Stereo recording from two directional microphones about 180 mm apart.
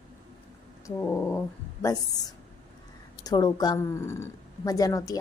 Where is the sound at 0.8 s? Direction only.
15° left (ahead or behind).